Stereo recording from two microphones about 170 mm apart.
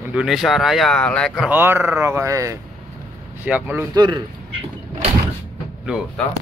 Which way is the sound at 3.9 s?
25° right (ahead or behind).